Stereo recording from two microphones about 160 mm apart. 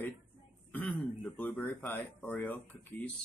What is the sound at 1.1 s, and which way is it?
Speech, 10° left (ahead or behind).